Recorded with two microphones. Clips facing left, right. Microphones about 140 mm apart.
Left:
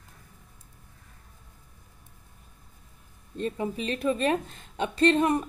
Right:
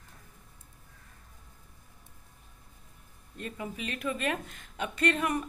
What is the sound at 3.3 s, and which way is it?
A woman's voice, 30° left (ahead or behind).